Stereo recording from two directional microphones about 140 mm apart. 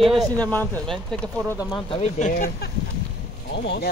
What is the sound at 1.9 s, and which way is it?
Speech, 50° left (ahead or behind).